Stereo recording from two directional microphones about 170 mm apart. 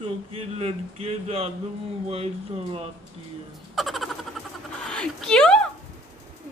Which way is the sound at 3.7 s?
Centre (ahead or behind).